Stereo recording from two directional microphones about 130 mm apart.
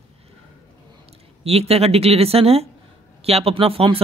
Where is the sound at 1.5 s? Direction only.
50° right (ahead or behind).